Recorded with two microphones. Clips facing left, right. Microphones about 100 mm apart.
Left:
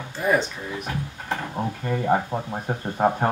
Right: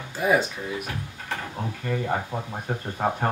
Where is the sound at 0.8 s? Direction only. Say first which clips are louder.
Left 4 dB; 25° left (ahead or behind).